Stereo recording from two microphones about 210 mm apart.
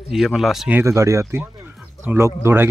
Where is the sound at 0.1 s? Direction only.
Centre (ahead or behind).